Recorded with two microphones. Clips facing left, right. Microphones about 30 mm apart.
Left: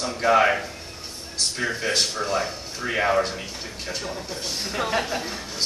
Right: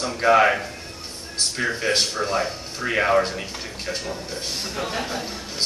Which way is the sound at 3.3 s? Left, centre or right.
Right.